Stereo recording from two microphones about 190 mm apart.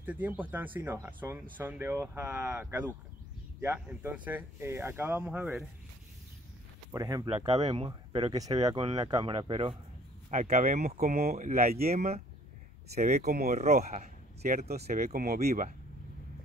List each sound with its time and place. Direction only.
0.0 s speech: 10° right (ahead or behind)
6.9 s speech: 20° right (ahead or behind)
7.4 s speech: 35° right (ahead or behind)
10.3 s speech: 40° right (ahead or behind)
13.0 s speech: 50° right (ahead or behind)
15.1 s speech: 50° right (ahead or behind)